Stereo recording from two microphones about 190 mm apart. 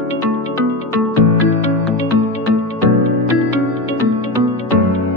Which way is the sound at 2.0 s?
35° left (ahead or behind).